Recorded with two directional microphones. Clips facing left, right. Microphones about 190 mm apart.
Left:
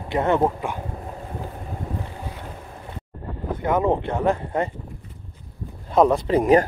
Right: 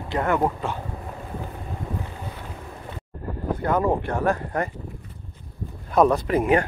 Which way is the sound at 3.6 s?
20° left (ahead or behind).